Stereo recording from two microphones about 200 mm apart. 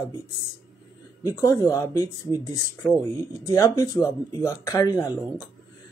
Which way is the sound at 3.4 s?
15° left (ahead or behind).